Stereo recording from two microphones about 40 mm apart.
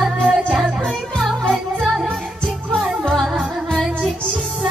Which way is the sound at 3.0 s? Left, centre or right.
Centre.